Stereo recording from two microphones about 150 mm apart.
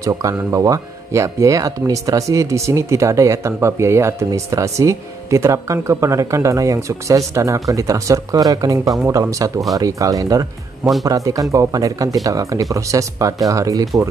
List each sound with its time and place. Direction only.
0.0 s speech: 20° right (ahead or behind)
10.8 s speech: centre (ahead or behind)
11.1 s speech: 20° right (ahead or behind)